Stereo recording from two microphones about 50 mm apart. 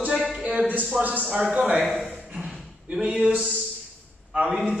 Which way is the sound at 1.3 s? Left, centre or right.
Centre.